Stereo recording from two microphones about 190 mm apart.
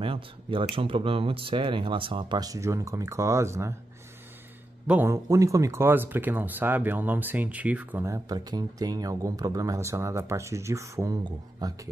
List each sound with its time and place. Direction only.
0.0 s speech: 25° right (ahead or behind)
4.8 s speech: 10° right (ahead or behind)